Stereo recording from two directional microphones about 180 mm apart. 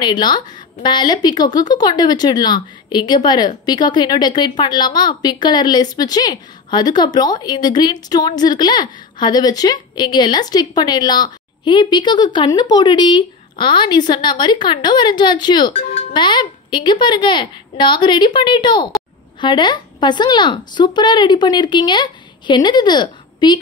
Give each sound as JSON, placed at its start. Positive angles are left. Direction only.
{"t": 0.0, "sound": "a woman's voice", "side_deg": 25}
{"t": 15.7, "sound": "a child's voice", "side_deg": 40}
{"t": 16.1, "sound": "a woman's voice", "side_deg": 25}